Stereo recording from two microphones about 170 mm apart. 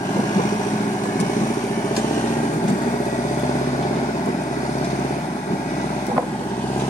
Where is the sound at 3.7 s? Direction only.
40° left (ahead or behind).